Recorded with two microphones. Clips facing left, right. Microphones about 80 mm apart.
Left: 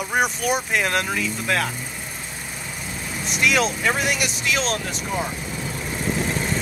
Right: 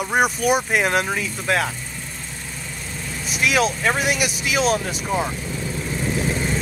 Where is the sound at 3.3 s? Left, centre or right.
Centre.